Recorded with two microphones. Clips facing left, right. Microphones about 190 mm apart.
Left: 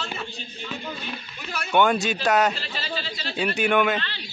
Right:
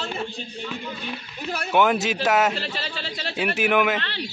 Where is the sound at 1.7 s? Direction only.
5° right (ahead or behind).